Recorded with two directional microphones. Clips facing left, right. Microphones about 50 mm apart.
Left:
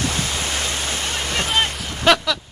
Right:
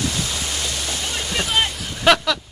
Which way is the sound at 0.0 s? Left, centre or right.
Left.